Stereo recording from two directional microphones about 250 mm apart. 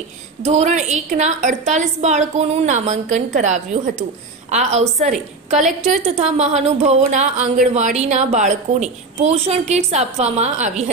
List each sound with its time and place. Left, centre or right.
0.5 s speech: right